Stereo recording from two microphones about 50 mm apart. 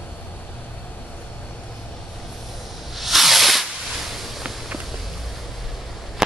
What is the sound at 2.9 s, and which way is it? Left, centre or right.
Snake, centre.